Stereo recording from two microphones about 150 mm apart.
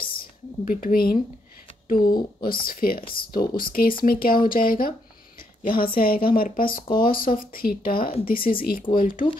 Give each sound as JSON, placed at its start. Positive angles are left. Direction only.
{"t": 0.1, "sound": "speech", "side_deg": 75}